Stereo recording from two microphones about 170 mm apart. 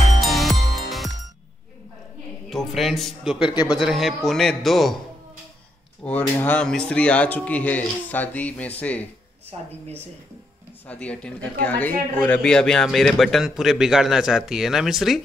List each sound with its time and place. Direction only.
0.2 s music: centre (ahead or behind)
2.5 s a man's voice: centre (ahead or behind)
3.4 s a man's voice: 25° left (ahead or behind)
3.7 s a man's voice: centre (ahead or behind)
6.0 s a man's voice: 10° left (ahead or behind)
9.5 s a woman's voice: 35° right (ahead or behind)
10.9 s a man's voice: 5° left (ahead or behind)